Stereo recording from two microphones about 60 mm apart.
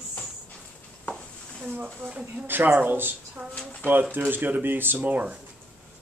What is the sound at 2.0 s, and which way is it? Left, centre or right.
Speech, right.